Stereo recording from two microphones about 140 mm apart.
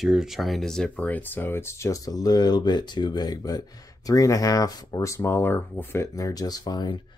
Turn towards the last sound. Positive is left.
turn(degrees=30)  # may be behind; listen again after turning